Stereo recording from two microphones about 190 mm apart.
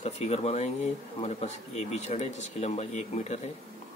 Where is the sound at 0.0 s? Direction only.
35° left (ahead or behind).